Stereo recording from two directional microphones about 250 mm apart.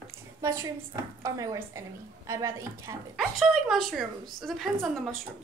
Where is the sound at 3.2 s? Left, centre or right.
Centre.